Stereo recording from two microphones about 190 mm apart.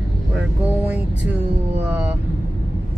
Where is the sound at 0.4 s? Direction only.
5° right (ahead or behind).